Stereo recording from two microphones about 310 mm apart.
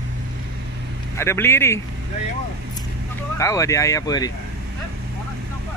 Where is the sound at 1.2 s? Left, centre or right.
Centre.